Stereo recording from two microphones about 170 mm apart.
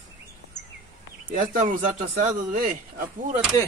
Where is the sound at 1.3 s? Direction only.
50° right (ahead or behind).